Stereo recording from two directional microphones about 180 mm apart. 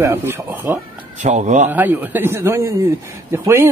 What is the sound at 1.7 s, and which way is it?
Speech, 10° right (ahead or behind).